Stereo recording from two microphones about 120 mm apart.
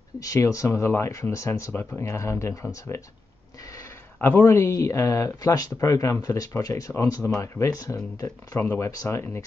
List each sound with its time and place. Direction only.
0.2 s speech: 25° left (ahead or behind)
4.2 s speech: 20° left (ahead or behind)